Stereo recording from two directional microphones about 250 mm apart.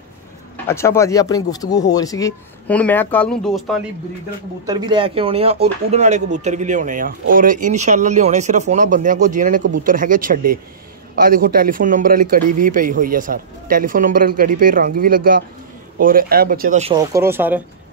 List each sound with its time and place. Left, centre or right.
0.7 s speech: centre
4.6 s a man's voice: centre
16.9 s speech: centre